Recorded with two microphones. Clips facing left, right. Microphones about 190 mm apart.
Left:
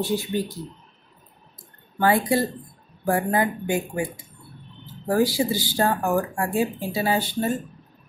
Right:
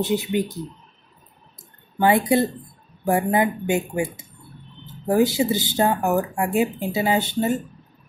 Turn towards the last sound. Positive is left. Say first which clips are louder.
# right 2 dB
turn(degrees=-20)  # may be behind; listen again after turning